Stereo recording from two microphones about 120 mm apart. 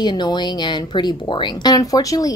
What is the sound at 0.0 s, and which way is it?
Speech, 40° left (ahead or behind).